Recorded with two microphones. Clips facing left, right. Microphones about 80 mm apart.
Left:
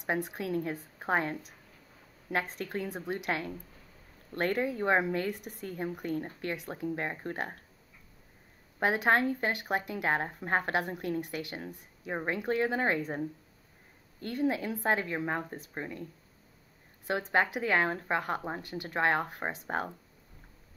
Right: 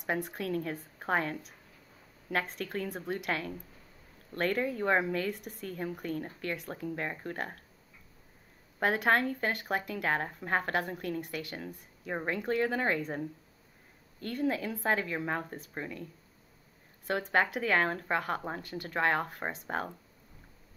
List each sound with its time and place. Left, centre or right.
0.0 s speech: centre
2.6 s speech: centre
2.9 s speech: centre
6.0 s speech: centre
8.7 s speech: centre
10.7 s speech: centre
17.3 s speech: centre